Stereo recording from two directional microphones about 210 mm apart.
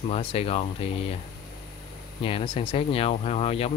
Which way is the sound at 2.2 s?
25° left (ahead or behind).